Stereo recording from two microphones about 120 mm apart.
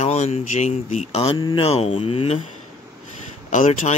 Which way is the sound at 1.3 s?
35° left (ahead or behind).